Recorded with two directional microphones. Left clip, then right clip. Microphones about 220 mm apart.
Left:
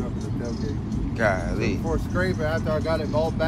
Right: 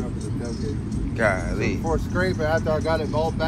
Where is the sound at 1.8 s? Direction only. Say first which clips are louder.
Right 2 dB; 15° right (ahead or behind).